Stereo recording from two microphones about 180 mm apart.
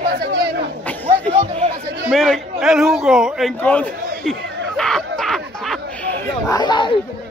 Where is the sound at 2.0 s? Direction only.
Centre (ahead or behind).